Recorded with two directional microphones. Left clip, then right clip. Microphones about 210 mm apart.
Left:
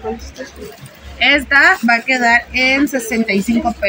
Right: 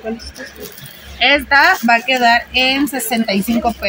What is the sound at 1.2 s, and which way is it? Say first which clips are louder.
Speech: even; 30° right (ahead or behind).